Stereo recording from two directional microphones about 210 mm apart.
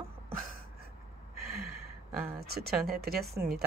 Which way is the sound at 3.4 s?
10° right (ahead or behind).